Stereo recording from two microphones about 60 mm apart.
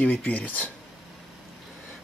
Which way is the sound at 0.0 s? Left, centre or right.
Centre.